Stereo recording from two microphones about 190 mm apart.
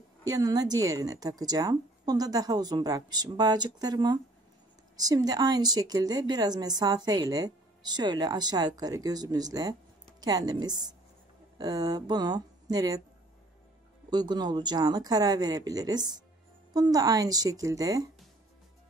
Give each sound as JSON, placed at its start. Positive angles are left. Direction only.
{"t": 0.3, "sound": "a woman's voice", "side_deg": -20}
{"t": 14.1, "sound": "a woman's voice", "side_deg": -20}